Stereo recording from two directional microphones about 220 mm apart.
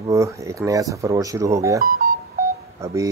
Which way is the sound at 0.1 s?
15° right (ahead or behind).